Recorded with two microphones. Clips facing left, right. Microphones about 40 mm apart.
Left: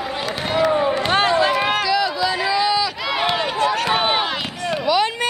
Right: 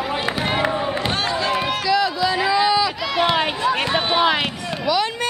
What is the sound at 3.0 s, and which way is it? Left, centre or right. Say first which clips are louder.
Run: right 1 dB; centre.